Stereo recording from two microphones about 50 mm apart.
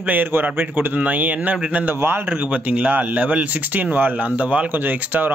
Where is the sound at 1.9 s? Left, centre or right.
Right.